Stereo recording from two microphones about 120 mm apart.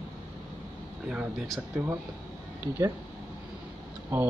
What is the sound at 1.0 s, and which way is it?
Speech, 5° right (ahead or behind).